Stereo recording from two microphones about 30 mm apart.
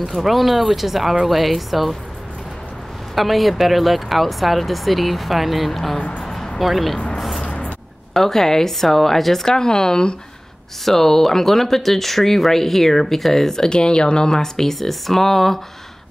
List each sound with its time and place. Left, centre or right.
0.1 s speech: centre
3.2 s speech: centre
5.9 s speech: left
6.6 s speech: centre
7.2 s music: centre
7.4 s a sound: left
8.1 s speech: centre
10.9 s speech: centre
13.7 s speech: left; by 15.6 s centre